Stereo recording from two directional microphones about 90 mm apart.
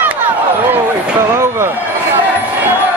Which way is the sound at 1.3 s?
35° right (ahead or behind).